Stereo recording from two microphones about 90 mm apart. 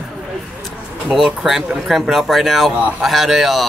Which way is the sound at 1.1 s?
Centre (ahead or behind).